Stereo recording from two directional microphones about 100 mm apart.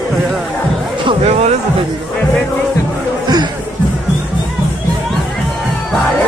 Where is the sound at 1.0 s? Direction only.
90° right.